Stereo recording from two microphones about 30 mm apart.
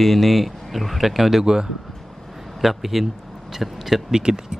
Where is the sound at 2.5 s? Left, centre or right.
Centre.